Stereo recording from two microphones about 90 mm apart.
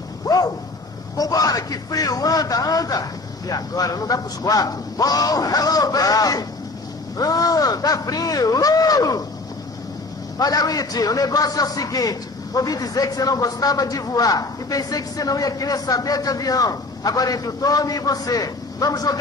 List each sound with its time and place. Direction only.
0.2 s a sound: 40° left (ahead or behind)
1.1 s a man's voice: 45° left (ahead or behind)
10.4 s a man's voice: 45° left (ahead or behind)